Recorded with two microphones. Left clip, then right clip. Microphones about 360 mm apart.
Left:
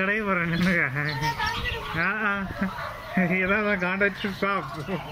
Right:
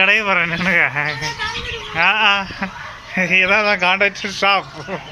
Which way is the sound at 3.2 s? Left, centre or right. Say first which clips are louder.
Right 10 dB; right.